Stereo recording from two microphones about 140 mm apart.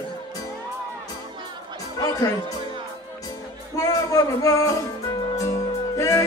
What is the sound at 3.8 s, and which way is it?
Speech, 25° left (ahead or behind).